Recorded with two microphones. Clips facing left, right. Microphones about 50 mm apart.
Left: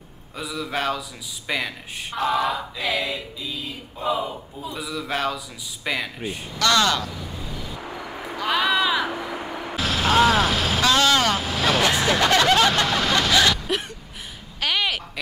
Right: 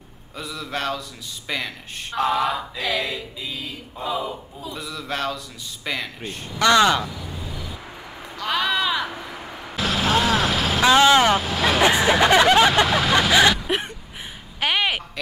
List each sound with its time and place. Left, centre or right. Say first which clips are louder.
0.4 s a man's voice: left 2 dB; centre
4.6 s a man's voice: left 2 dB; centre
6.6 s speech: right 4 dB; centre
8.4 s speech: left 1 dB; centre
9.1 s vehicle: left 5 dB; centre
9.8 s a sound: left 2 dB; centre
10.8 s speech: right 5 dB; centre
11.4 s vehicle: right 1 dB; centre
11.8 s speech: right 6 dB; centre
14.6 s a sound: right 2 dB; right